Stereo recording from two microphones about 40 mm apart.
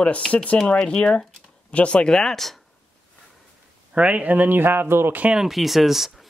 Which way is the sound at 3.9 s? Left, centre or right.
Right.